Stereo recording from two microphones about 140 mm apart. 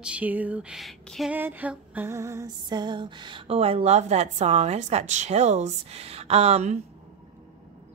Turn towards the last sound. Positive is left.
turn(degrees=-50)  # may be behind; listen again after turning